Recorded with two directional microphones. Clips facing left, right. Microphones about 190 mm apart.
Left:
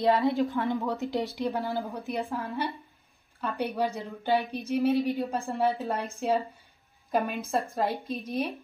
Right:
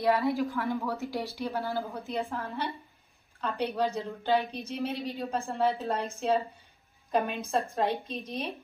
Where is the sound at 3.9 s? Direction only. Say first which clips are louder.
Even; 15° left (ahead or behind).